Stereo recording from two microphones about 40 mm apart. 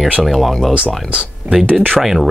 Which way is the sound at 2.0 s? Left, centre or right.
Centre.